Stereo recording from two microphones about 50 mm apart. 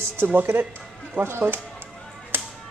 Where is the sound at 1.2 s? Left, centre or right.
Right.